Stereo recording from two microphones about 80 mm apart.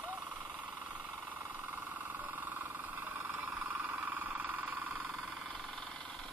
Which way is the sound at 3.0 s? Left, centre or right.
Right.